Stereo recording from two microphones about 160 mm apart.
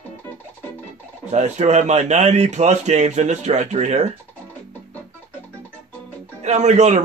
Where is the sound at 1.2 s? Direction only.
45° right (ahead or behind).